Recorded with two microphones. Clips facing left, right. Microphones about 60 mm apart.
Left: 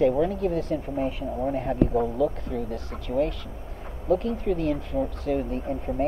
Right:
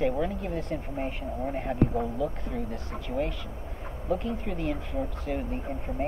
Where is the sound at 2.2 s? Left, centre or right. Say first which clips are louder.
Left 5 dB; right.